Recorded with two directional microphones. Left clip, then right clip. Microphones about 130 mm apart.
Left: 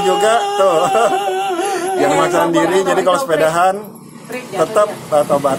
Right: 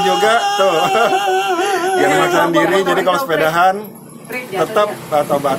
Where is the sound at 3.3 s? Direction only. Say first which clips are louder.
Even; 15° left (ahead or behind).